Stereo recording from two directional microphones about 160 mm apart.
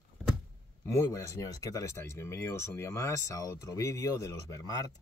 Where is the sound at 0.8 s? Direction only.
20° left (ahead or behind).